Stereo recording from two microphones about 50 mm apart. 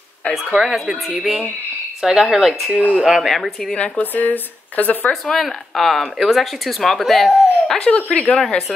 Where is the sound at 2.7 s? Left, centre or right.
Right.